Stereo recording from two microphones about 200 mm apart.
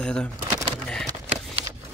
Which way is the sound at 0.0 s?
5° left (ahead or behind).